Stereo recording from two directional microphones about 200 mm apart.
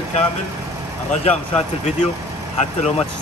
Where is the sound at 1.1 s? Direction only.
35° left (ahead or behind).